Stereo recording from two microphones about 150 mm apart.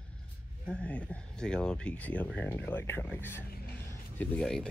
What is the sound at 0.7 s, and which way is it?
Speech, 10° left (ahead or behind).